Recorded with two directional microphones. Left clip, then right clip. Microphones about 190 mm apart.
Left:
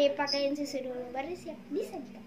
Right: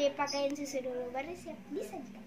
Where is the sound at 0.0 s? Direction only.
Centre (ahead or behind).